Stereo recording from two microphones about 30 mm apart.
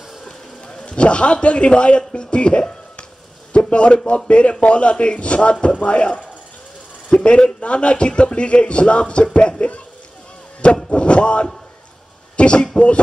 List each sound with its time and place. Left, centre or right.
0.8 s a man's voice: left
7.2 s a man's voice: left
10.9 s a man's voice: left
12.7 s music: left